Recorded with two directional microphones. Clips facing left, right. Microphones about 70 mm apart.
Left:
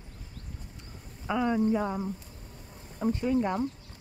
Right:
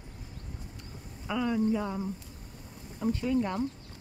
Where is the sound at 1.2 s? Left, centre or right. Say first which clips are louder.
Left 2 dB; left.